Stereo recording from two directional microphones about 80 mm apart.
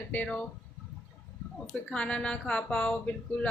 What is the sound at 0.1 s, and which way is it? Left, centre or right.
Speech, centre.